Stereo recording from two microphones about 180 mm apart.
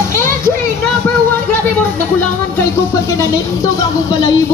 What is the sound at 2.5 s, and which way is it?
Music, 15° left (ahead or behind).